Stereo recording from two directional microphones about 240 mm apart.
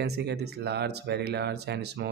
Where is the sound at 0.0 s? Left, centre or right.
Right.